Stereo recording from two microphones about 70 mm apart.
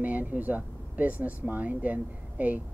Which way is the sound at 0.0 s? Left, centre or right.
Right.